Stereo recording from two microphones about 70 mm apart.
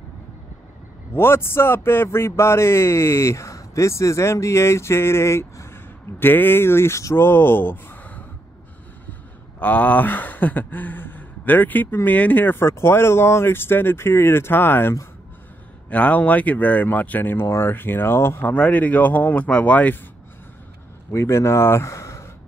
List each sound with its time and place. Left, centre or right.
1.1 s speech: left
7.2 s speech: left
9.6 s speech: left
15.9 s speech: left
18.5 s speech: left
21.1 s speech: left